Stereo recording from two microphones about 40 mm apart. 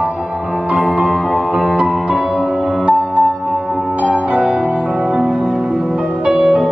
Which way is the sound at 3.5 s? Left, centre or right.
Centre.